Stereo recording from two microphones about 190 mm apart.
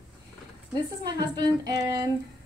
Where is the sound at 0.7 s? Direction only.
20° right (ahead or behind).